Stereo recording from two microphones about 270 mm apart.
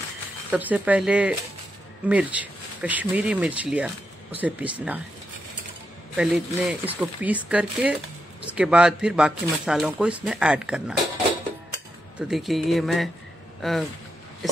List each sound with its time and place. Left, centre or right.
0.5 s speech: centre
6.1 s speech: centre
12.2 s speech: centre